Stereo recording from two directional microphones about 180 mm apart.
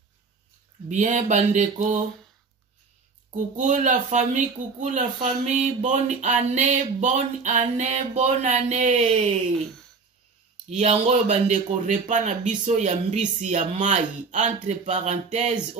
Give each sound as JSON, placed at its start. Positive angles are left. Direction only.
{"t": 0.8, "sound": "mantra", "side_deg": -40}
{"t": 3.5, "sound": "speech", "side_deg": -45}
{"t": 10.8, "sound": "speech", "side_deg": -40}